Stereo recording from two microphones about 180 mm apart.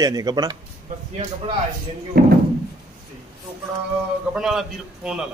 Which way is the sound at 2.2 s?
60° right (ahead or behind).